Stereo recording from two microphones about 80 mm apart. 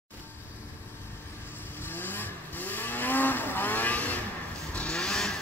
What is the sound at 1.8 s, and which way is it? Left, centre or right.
Vehicle, left.